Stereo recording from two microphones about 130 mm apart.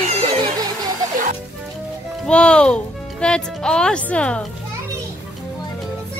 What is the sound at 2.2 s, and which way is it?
Speech, 5° left (ahead or behind).